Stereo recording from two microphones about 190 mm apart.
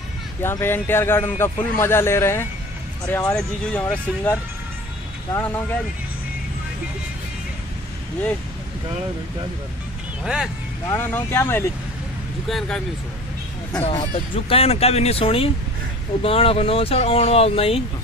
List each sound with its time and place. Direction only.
0.4 s a man's voice: 10° left (ahead or behind)
10.2 s speech: 5° right (ahead or behind)
10.9 s a man's voice: 10° left (ahead or behind)
13.8 s speech: 30° left (ahead or behind)